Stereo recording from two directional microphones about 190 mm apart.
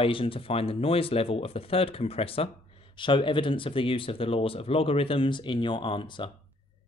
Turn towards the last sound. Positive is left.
turn(degrees=25)  # may be behind; listen again after turning